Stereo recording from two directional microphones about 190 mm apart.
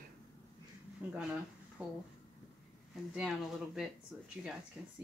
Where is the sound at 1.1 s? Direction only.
5° right (ahead or behind).